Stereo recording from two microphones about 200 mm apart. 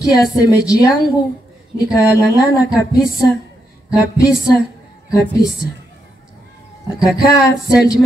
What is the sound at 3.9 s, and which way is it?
Speech, 15° left (ahead or behind).